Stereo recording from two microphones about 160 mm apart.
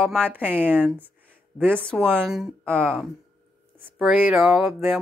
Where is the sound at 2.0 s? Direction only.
Centre (ahead or behind).